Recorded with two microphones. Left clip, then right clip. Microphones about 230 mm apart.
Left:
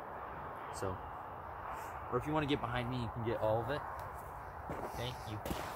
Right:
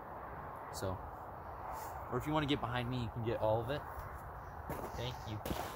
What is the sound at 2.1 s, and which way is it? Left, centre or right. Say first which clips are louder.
Speech: left 1 dB; right.